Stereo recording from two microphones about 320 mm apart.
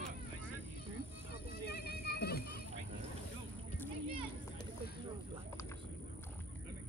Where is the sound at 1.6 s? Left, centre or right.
Left.